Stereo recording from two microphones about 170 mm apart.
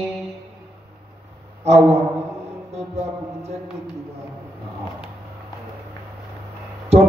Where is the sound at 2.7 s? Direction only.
40° right (ahead or behind).